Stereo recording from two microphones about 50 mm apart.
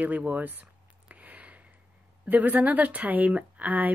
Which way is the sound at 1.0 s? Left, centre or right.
Right.